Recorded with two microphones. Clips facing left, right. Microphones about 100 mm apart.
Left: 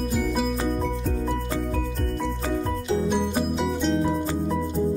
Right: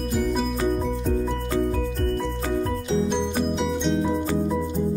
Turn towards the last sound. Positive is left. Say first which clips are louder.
# even
turn(degrees=0)  # may be behind; listen again after turning